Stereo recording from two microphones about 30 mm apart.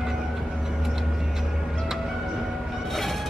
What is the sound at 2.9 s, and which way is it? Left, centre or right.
Music, centre.